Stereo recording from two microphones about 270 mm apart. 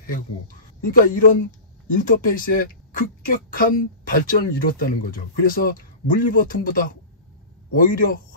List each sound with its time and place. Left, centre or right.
0.9 s speech: left